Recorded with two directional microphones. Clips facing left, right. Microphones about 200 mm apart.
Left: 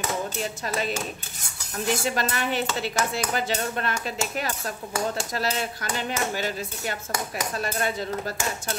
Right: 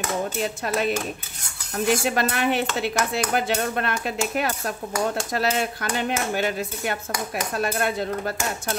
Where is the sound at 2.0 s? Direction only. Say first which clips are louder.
Right 4 dB; 60° right (ahead or behind).